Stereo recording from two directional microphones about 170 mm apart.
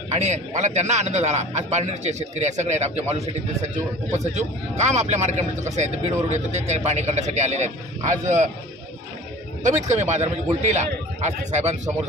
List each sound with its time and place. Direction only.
0.1 s a man's voice: 40° right (ahead or behind)
9.6 s a man's voice: 45° right (ahead or behind)